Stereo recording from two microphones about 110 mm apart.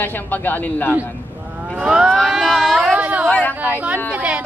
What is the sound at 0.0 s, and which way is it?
Speech, 15° left (ahead or behind).